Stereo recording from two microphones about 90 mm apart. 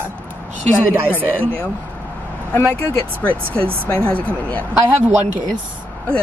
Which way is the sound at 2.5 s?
25° left (ahead or behind).